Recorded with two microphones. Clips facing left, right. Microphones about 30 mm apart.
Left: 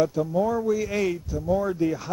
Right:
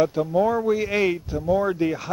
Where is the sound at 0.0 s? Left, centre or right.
Right.